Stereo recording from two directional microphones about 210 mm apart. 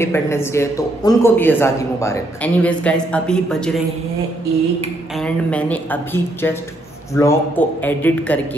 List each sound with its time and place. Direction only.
0.0 s a man's voice: 10° left (ahead or behind)
5.1 s a man's voice: 5° left (ahead or behind)